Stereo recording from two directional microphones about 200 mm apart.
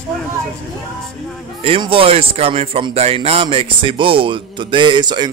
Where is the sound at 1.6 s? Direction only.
25° right (ahead or behind).